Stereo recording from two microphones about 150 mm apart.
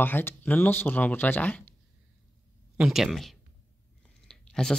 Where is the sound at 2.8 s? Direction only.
Centre (ahead or behind).